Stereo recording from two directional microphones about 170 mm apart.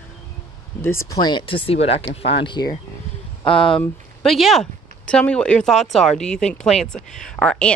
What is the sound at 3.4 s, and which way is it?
Speech, 5° left (ahead or behind).